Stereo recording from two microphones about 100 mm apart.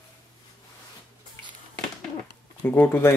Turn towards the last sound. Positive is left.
turn(degrees=25)  # may be behind; listen again after turning